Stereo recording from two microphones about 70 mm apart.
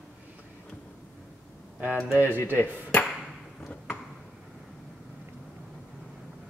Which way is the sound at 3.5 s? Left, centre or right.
Centre.